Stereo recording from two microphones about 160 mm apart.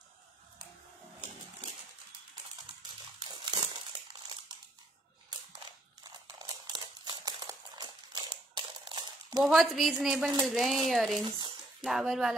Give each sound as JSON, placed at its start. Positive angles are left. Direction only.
{"t": 3.3, "sound": "crumpling", "side_deg": -25}
{"t": 6.0, "sound": "a sound", "side_deg": -25}
{"t": 9.4, "sound": "speech", "side_deg": 0}
{"t": 11.2, "sound": "speech", "side_deg": -25}
{"t": 11.8, "sound": "speech", "side_deg": 0}